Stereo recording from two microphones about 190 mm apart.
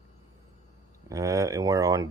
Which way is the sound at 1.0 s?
15° right (ahead or behind).